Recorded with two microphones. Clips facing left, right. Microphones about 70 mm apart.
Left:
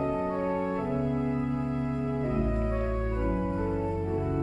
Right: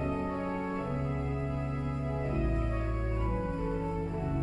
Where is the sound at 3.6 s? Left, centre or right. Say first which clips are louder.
Left 4 dB; left.